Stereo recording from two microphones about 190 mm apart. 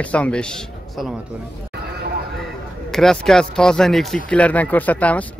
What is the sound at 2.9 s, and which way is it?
Speech, centre (ahead or behind).